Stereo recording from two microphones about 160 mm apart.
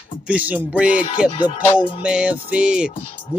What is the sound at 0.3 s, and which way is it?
Music, 10° right (ahead or behind).